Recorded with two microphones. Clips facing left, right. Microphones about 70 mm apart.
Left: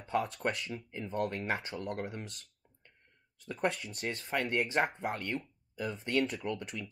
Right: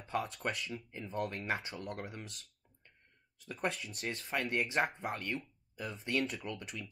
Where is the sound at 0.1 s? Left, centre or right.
Left.